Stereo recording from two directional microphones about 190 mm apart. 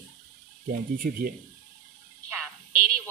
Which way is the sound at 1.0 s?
50° right (ahead or behind).